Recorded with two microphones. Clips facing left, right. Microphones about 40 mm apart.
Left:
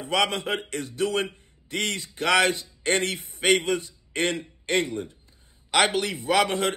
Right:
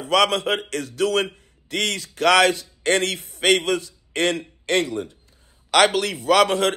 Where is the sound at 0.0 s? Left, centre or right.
Right.